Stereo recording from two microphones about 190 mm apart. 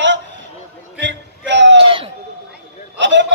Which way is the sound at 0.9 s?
70° right (ahead or behind).